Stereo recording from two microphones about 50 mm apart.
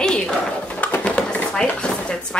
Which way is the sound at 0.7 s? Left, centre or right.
Left.